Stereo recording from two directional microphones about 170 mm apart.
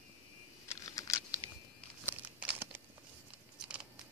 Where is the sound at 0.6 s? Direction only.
20° left (ahead or behind).